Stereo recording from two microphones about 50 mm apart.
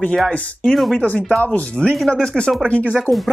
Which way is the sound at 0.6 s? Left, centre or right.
Centre.